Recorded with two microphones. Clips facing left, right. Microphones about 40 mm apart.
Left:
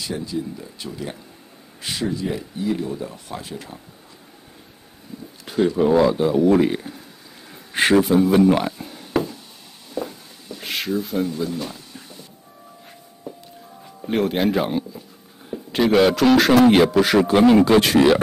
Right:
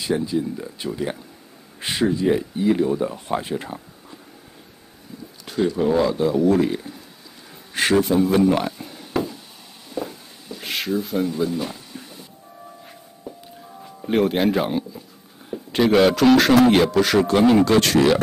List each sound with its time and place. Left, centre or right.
0.0 s speech: right
5.8 s a man's voice: centre
7.7 s a sound: centre
13.3 s music: centre
13.8 s a man's voice: centre